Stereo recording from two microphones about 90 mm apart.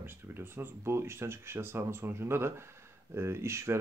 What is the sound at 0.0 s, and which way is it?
Speech, 25° right (ahead or behind).